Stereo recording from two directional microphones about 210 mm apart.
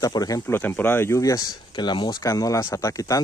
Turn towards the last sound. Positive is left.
turn(degrees=15)  # may be behind; listen again after turning